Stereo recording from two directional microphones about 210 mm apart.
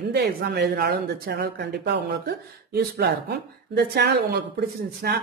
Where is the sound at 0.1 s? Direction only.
50° right (ahead or behind).